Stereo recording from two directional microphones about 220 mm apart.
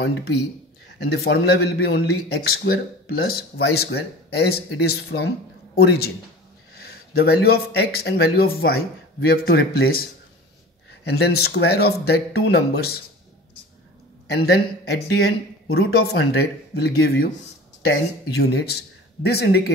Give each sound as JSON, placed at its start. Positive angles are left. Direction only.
{"t": 0.9, "sound": "speech", "side_deg": 45}
{"t": 11.1, "sound": "speech", "side_deg": 50}
{"t": 14.2, "sound": "speech", "side_deg": 45}